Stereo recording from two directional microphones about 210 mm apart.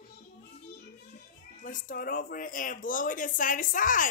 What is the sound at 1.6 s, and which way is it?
Speech, 40° left (ahead or behind).